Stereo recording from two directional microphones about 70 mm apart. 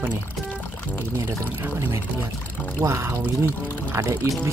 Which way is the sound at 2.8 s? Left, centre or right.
Right.